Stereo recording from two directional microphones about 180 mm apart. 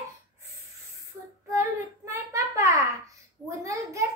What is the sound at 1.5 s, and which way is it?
Child singing, 15° right (ahead or behind).